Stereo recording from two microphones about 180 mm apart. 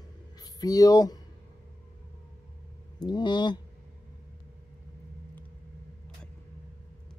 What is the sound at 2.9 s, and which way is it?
Speech, 25° left (ahead or behind).